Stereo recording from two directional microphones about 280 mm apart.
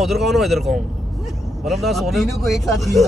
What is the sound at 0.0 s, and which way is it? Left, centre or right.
Speech, centre.